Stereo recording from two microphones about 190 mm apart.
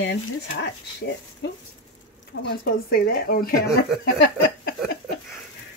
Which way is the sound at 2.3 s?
60° left (ahead or behind).